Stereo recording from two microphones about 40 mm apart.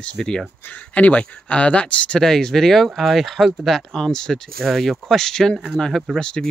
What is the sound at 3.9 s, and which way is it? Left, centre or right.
Speech, centre.